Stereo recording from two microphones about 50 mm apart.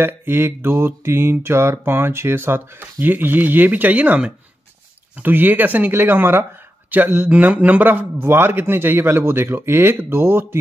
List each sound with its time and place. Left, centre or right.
0.0 s mantra: right
5.2 s speech: right
7.2 s speech: right
8.2 s mantra: right